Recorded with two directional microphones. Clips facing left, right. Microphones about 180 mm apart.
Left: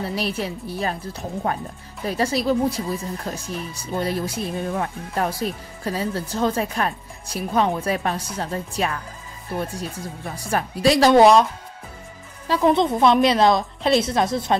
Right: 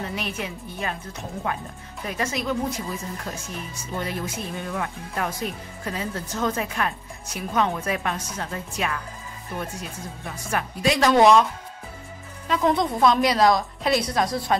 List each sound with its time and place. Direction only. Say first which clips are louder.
0.0 s speech: left 5 dB; 35° left (ahead or behind)
12.6 s a woman's voice: left 3 dB; 25° left (ahead or behind)